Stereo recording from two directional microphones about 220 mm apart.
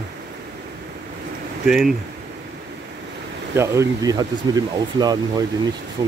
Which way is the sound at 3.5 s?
15° right (ahead or behind).